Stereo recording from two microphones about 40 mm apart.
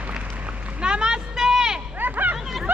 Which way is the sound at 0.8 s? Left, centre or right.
Right.